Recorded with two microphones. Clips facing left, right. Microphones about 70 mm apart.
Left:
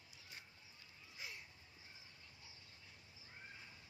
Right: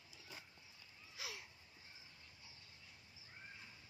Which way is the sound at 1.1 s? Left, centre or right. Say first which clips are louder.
Right 2 dB; right.